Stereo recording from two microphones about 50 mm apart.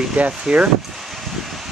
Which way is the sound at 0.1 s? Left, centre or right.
Right.